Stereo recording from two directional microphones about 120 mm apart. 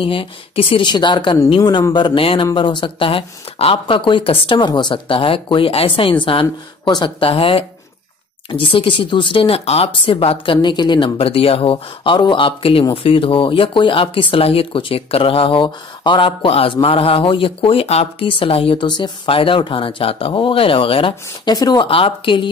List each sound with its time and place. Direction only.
0.0 s a woman's voice: 45° left (ahead or behind)
7.2 s speech: 50° left (ahead or behind)
21.5 s a woman's voice: 35° left (ahead or behind)
21.8 s speech: 50° left (ahead or behind)